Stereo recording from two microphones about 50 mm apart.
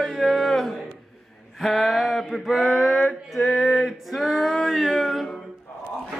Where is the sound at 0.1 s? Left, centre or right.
Centre.